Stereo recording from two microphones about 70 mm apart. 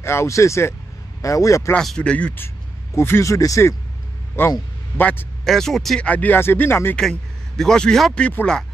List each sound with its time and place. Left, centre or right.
0.0 s speech: left
1.8 s speech: centre
2.9 s speech: left
3.3 s speech: left
4.4 s speech: left
4.9 s speech: left
5.4 s speech: centre
5.9 s speech: left
7.0 s a man's voice: centre